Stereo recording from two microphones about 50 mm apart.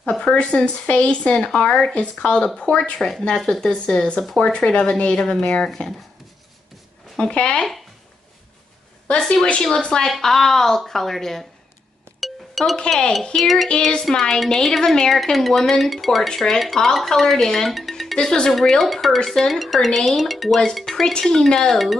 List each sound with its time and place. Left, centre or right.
0.2 s speech: left
2.9 s a woman's voice: centre
4.4 s a woman's voice: centre
7.2 s speech: centre
9.3 s a woman's voice: centre
12.2 s chink: centre
13.4 s speech: centre
13.7 s a woman's voice: centre
18.1 s speech: centre